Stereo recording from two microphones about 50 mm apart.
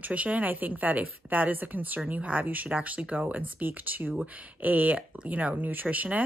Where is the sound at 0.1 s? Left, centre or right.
Right.